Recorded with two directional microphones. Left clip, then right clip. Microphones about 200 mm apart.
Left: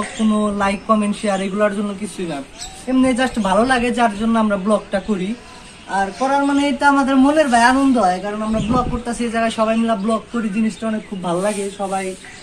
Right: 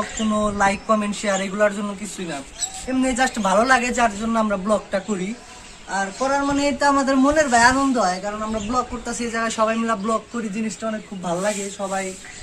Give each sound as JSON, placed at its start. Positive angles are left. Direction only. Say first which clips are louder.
{"t": 0.4, "sound": "a man's voice", "louder": "right 3 dB", "side_deg": -15}
{"t": 2.9, "sound": "a man's voice", "louder": "left 4 dB", "side_deg": -10}
{"t": 3.4, "sound": "a man's voice", "louder": "left 1 dB", "side_deg": -20}
{"t": 11.2, "sound": "a man's voice", "louder": "left 3 dB", "side_deg": -15}